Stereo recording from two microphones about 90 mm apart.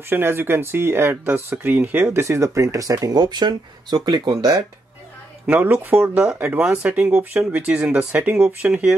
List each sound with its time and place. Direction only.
0.1 s speech: 25° right (ahead or behind)
2.1 s speech: 35° right (ahead or behind); by 4.4 s 50° right (ahead or behind)
4.4 s speech: 40° right (ahead or behind)
5.5 s speech: 20° right (ahead or behind)